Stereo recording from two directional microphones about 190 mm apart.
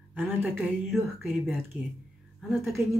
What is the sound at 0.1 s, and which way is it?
Speech, 10° right (ahead or behind).